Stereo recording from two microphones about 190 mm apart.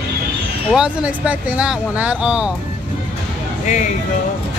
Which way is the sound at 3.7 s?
40° left (ahead or behind).